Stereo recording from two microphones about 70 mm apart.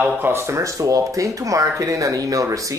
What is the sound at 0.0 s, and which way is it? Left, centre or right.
Speech, right.